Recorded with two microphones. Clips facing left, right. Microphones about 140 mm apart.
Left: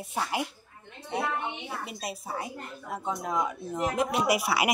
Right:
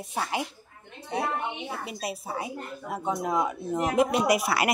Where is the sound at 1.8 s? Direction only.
5° right (ahead or behind).